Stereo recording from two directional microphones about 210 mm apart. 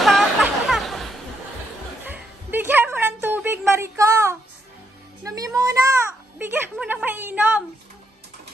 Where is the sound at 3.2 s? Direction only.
10° right (ahead or behind).